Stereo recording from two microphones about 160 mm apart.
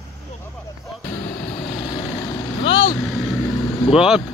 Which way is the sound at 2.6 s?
35° left (ahead or behind).